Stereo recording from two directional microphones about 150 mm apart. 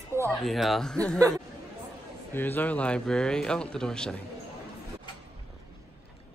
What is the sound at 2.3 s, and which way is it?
Speech, 15° left (ahead or behind).